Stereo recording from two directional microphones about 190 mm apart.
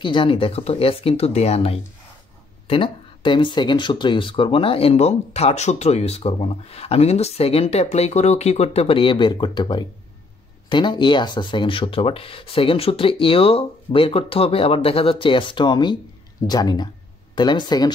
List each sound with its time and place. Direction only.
0.0 s speech: 25° left (ahead or behind)